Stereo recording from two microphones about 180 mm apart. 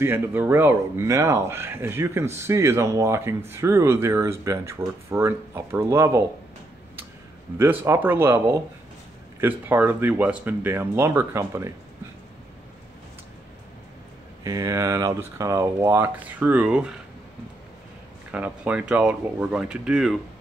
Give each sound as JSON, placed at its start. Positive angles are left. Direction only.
{"t": 0.0, "sound": "speech", "side_deg": -10}
{"t": 7.5, "sound": "speech", "side_deg": -15}
{"t": 14.4, "sound": "speech", "side_deg": -20}
{"t": 18.3, "sound": "speech", "side_deg": -10}